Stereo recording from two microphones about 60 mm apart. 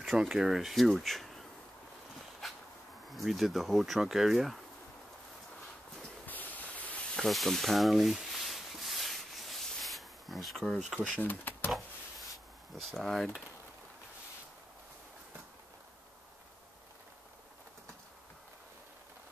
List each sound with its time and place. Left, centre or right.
0.1 s speech: centre
3.1 s speech: centre
6.2 s a sound: left
7.2 s a sound: centre
11.1 s speech: left
12.9 s speech: centre